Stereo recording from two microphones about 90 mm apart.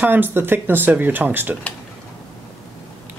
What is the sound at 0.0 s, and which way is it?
Speech, 20° right (ahead or behind).